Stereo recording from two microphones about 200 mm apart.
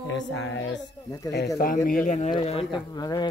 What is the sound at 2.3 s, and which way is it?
Speech, 25° left (ahead or behind).